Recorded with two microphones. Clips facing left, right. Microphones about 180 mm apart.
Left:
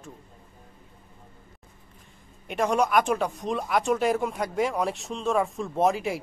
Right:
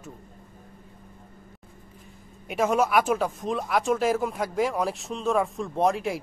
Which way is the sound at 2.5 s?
5° right (ahead or behind).